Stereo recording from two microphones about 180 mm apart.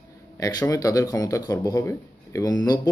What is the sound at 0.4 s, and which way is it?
Speech, 20° left (ahead or behind).